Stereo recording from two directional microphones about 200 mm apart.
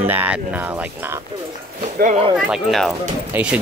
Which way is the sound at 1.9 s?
40° right (ahead or behind).